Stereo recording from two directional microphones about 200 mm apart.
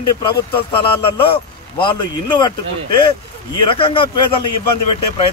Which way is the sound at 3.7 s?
25° left (ahead or behind).